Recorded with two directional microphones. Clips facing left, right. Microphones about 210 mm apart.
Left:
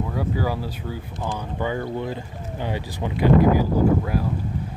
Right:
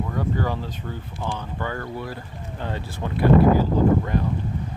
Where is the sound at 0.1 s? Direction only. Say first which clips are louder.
Left 1 dB; 10° left (ahead or behind).